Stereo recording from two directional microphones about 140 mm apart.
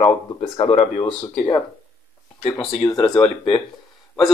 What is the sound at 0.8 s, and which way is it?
Speech, 40° left (ahead or behind).